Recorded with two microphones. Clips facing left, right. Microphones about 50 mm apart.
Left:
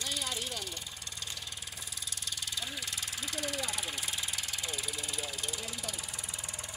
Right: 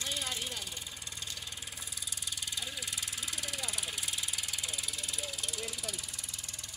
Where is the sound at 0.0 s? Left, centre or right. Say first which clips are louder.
Left 1 dB; right.